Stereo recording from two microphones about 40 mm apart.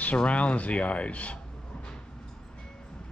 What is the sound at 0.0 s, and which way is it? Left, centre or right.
Speech, left.